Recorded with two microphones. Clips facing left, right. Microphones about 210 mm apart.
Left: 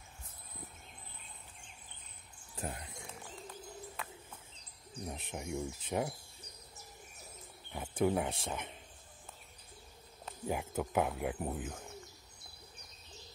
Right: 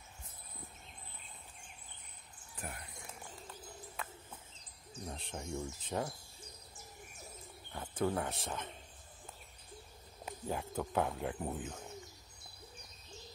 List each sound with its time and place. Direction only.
2.5 s a sound: 25° left (ahead or behind)
4.0 s bird: centre (ahead or behind)
5.0 s speech: 10° left (ahead or behind)
7.7 s speech: 10° left (ahead or behind)
10.4 s speech: 10° left (ahead or behind)